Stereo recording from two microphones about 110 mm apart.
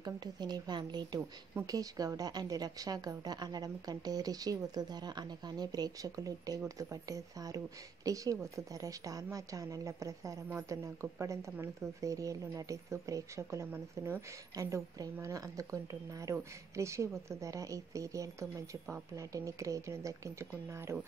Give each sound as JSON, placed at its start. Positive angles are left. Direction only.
{"t": 0.0, "sound": "speech", "side_deg": -40}
{"t": 14.5, "sound": "speech", "side_deg": -30}